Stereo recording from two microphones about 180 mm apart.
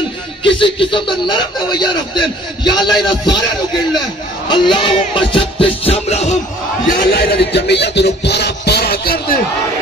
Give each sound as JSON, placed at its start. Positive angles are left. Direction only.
{"t": 0.4, "sound": "speech", "side_deg": 30}
{"t": 4.5, "sound": "music", "side_deg": 25}
{"t": 7.1, "sound": "music", "side_deg": 70}